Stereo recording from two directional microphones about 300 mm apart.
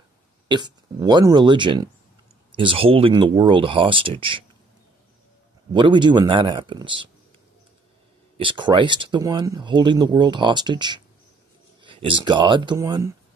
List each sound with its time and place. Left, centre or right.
0.5 s speech: centre
5.7 s speech: centre
8.4 s speech: centre